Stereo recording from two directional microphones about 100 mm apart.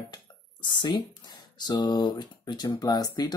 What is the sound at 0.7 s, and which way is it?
Speech, 50° left (ahead or behind).